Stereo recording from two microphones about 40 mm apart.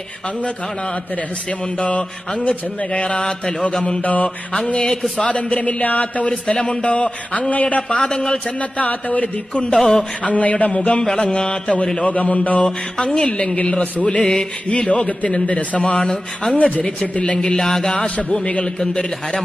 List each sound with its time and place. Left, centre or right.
1.8 s mantra: left
4.0 s mantra: left
5.2 s mantra: left
6.2 s mantra: left
8.0 s mantra: left
8.5 s mantra: left
12.0 s mantra: left
12.6 s mantra: left
14.2 s mantra: centre
14.7 s mantra: left
16.5 s mantra: left
17.6 s music: centre
17.9 s mantra: left
18.8 s music: centre